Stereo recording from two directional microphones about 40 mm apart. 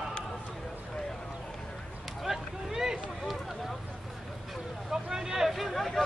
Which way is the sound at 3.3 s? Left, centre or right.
Centre.